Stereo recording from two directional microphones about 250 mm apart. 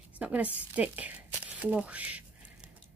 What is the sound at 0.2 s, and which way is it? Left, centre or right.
A woman's voice, centre.